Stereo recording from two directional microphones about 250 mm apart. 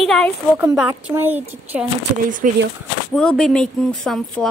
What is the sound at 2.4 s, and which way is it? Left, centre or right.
Speech, right.